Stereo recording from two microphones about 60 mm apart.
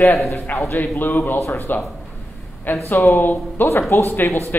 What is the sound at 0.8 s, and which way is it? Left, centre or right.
Speech, left.